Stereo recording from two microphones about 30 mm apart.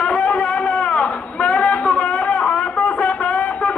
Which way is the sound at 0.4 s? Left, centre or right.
Left.